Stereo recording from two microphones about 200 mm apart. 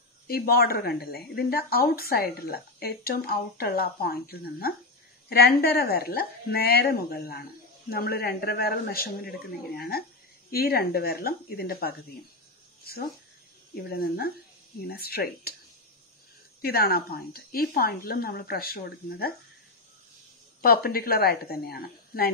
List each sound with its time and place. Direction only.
0.3 s a woman's voice: 50° left (ahead or behind)
13.8 s a woman's voice: 50° left (ahead or behind)
16.6 s a woman's voice: 50° left (ahead or behind)
20.6 s a woman's voice: 50° left (ahead or behind)